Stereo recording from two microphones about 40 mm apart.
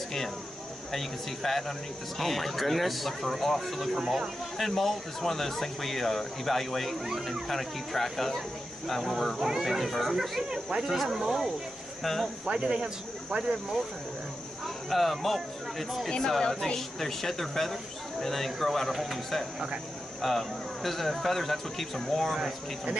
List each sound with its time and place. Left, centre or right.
0.9 s speech: centre
9.7 s speech: centre
12.0 s speech: centre
12.4 s speech: right
14.9 s speech: centre
16.1 s speech: centre